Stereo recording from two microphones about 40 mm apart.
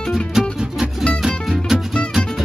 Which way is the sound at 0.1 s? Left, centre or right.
Centre.